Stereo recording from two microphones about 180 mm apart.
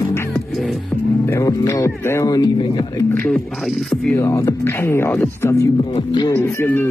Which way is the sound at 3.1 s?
10° left (ahead or behind).